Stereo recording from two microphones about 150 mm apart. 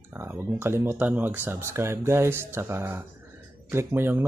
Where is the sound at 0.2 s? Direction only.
15° right (ahead or behind).